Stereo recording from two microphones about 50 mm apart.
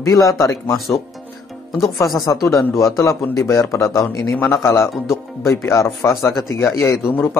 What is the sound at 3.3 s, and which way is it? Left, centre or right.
A man's voice, left.